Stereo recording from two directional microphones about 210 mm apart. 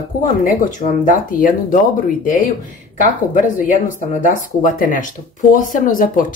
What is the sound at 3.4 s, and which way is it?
Speech, 40° left (ahead or behind).